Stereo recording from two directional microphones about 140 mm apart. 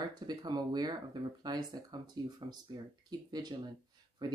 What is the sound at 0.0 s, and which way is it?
Speech, 30° right (ahead or behind).